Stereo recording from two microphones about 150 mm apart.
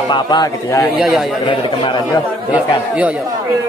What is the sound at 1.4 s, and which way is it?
Speech, 35° left (ahead or behind).